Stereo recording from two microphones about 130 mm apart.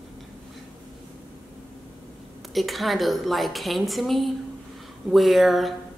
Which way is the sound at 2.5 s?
Centre (ahead or behind).